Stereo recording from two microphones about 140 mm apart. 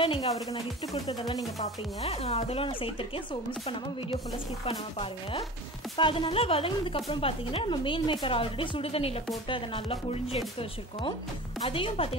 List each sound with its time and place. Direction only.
0.0 s a sound: 40° left (ahead or behind)
1.0 s speech: 30° left (ahead or behind)
1.6 s speech: 45° left (ahead or behind)
4.6 s speech: 35° left (ahead or behind)